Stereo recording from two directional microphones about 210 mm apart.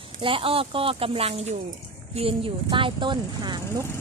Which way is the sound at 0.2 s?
25° right (ahead or behind).